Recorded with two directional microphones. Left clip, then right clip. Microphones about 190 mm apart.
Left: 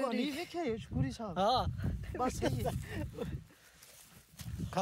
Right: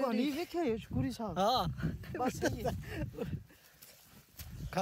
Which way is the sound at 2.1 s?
20° left (ahead or behind).